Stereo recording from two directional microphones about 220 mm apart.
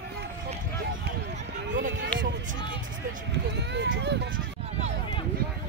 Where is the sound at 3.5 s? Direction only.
50° right (ahead or behind).